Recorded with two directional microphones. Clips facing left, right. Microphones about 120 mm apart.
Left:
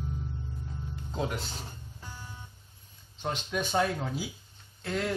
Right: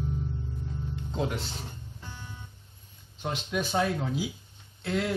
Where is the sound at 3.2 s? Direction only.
Centre (ahead or behind).